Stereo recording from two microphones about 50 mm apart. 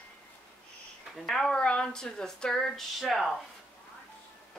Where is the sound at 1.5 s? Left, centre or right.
Centre.